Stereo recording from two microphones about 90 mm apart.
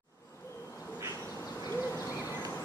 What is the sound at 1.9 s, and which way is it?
Owl, 35° left (ahead or behind).